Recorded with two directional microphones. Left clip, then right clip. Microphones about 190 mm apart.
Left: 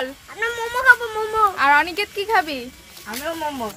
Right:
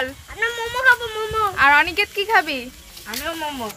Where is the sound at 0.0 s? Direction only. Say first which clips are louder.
Right 2 dB; centre (ahead or behind); by 2.6 s 20° right (ahead or behind).